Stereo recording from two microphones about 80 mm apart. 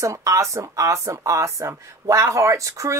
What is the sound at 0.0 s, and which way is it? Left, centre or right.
A woman's voice, right.